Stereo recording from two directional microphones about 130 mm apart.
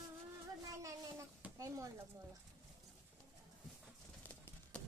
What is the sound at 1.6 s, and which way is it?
Speech, 25° right (ahead or behind).